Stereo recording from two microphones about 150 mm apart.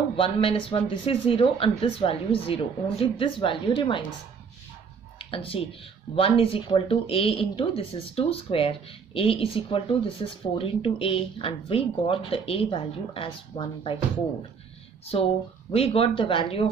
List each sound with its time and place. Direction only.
0.1 s speech: 40° left (ahead or behind)
5.2 s speech: 40° left (ahead or behind)
15.1 s speech: 40° left (ahead or behind)